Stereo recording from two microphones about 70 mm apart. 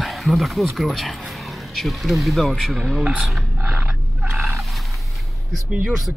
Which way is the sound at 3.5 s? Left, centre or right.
Right.